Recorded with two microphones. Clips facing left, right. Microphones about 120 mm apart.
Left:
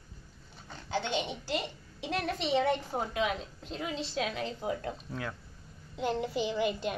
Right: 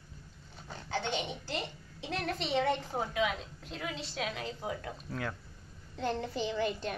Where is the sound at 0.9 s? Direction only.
15° left (ahead or behind).